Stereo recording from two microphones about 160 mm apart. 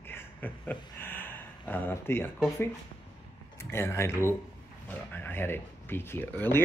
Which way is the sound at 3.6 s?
15° left (ahead or behind).